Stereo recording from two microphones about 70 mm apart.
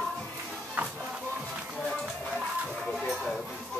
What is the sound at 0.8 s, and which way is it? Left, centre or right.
Music, right.